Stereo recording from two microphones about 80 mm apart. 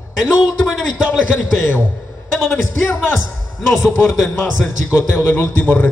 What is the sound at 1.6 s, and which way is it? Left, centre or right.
Speech, left.